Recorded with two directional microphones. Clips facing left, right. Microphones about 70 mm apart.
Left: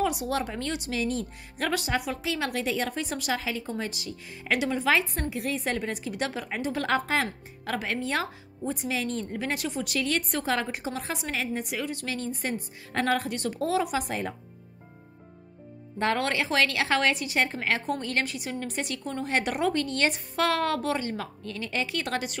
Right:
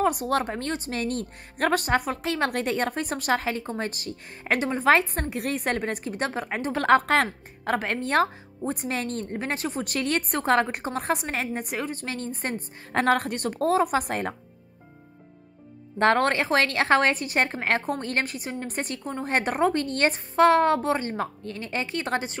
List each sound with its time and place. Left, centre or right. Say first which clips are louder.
0.0 s a woman's voice: right 4 dB; right
7.6 s a woman's voice: right 4 dB; right
9.4 s a woman's voice: right 2 dB; right
16.0 s a woman's voice: right 5 dB; right